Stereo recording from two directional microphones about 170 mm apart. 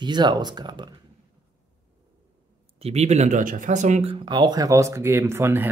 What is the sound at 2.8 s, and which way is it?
Speech, 40° right (ahead or behind).